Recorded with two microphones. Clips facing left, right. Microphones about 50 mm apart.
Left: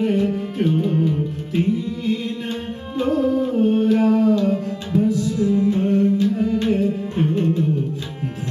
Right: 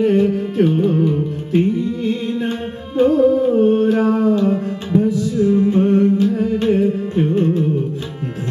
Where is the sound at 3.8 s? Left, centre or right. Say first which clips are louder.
Right 1 dB; right.